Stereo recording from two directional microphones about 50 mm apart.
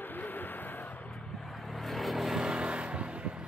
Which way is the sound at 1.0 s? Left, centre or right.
Centre.